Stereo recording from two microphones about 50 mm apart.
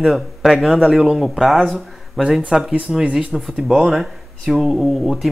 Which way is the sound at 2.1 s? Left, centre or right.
Centre.